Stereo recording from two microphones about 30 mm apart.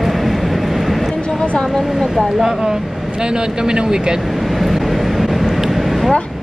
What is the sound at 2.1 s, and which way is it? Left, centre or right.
Speech, centre.